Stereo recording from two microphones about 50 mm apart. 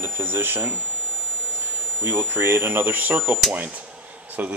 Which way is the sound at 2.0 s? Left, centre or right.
Right.